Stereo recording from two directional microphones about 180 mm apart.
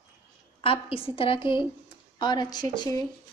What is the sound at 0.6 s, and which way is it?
A woman's voice, 30° left (ahead or behind).